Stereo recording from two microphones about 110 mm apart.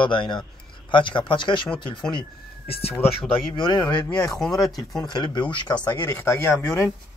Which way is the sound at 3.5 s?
40° left (ahead or behind).